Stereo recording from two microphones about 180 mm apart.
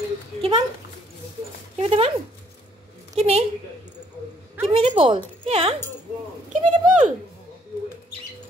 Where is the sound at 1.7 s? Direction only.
35° right (ahead or behind).